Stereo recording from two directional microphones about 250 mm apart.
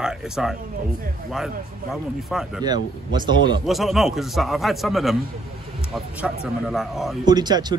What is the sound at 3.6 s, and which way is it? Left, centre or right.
Speech, centre.